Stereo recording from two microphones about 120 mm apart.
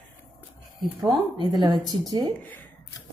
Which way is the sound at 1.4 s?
35° right (ahead or behind).